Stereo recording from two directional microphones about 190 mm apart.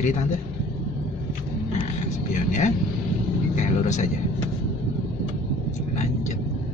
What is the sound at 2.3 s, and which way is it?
Speech, 40° left (ahead or behind).